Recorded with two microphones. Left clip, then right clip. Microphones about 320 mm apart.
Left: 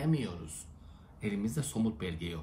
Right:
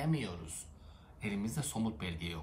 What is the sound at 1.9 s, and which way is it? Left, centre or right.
Speech, centre.